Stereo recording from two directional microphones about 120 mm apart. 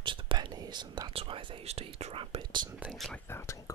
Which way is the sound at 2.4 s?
40° right (ahead or behind).